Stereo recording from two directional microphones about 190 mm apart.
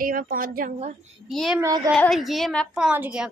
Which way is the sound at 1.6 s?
20° right (ahead or behind).